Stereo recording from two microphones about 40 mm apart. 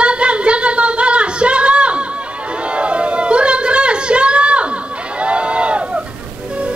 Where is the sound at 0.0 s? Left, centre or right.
Right.